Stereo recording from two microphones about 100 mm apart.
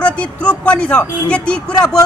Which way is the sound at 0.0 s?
15° left (ahead or behind).